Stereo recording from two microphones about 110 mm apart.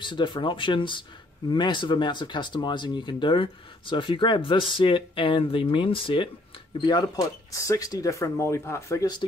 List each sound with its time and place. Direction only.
0.0 s speech: 50° left (ahead or behind)
6.8 s speech: 40° left (ahead or behind)
7.5 s speech: 30° left (ahead or behind)